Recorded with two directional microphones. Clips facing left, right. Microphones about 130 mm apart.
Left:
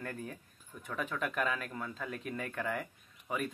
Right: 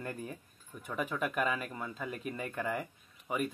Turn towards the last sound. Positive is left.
turn(degrees=-10)  # may be behind; listen again after turning